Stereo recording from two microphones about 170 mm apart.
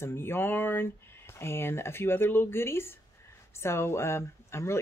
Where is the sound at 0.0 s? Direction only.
15° left (ahead or behind).